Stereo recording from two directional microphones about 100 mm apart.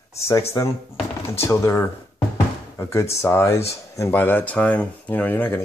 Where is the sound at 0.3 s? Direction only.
30° left (ahead or behind).